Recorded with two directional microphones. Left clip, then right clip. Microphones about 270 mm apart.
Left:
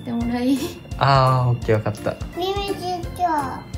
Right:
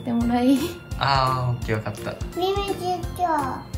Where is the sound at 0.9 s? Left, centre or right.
Centre.